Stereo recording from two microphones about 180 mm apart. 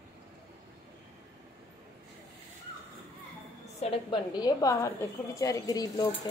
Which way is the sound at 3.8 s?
30° left (ahead or behind).